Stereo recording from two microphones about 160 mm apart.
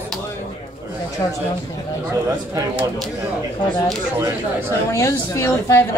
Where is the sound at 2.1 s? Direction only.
20° right (ahead or behind).